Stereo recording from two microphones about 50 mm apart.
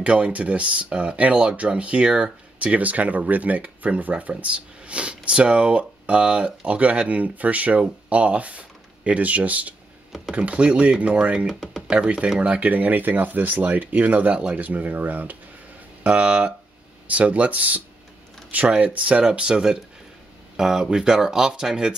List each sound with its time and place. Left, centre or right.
0.0 s speech: right
11.4 s speech: centre
12.0 s speech: right
14.7 s speech: right
16.0 s speech: right